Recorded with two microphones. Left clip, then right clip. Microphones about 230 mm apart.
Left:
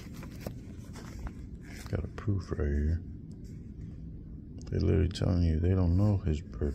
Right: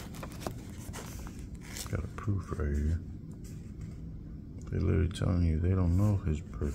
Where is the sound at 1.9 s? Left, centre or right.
Centre.